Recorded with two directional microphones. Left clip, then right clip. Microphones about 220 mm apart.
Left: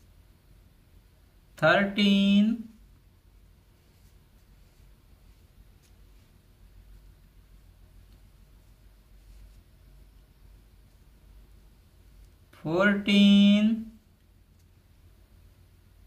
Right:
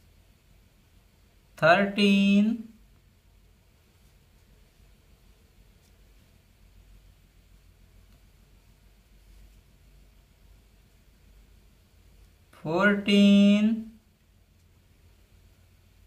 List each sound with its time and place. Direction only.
1.5 s speech: 20° right (ahead or behind)
12.4 s speech: 15° right (ahead or behind)